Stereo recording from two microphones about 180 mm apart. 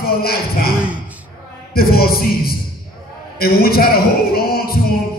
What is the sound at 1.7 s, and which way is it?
A man's voice, 55° left (ahead or behind).